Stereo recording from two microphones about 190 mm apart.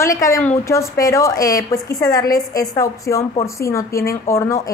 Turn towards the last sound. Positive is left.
turn(degrees=15)  # may be behind; listen again after turning